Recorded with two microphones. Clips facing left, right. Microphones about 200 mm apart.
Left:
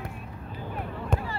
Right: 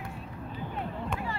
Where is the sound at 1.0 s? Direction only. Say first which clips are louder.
Left 7 dB; 35° left (ahead or behind).